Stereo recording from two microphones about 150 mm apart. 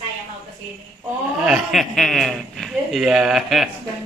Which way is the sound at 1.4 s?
Centre (ahead or behind).